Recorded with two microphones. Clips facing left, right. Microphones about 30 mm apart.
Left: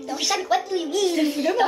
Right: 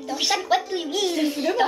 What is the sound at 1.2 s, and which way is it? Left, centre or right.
Speech, centre.